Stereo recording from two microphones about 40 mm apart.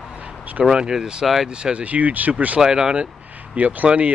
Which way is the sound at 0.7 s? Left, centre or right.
Centre.